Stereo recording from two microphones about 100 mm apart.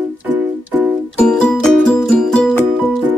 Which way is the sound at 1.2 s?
10° left (ahead or behind).